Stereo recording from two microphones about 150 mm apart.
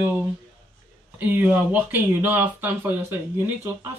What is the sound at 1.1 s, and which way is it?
Speech, 10° right (ahead or behind).